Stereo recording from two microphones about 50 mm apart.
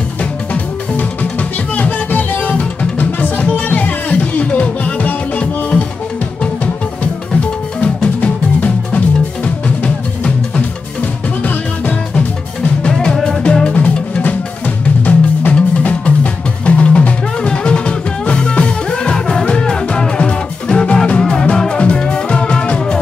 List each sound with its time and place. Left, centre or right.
1.8 s music: left
7.3 s music: left
13.0 s music: centre